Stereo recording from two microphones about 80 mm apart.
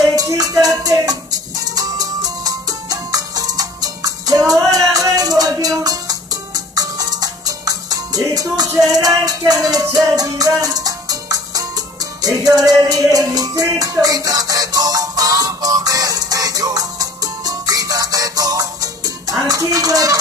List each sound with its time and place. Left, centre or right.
0.0 s music: right